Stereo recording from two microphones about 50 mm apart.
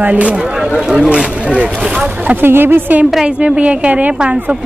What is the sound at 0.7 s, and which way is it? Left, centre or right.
Speech, centre.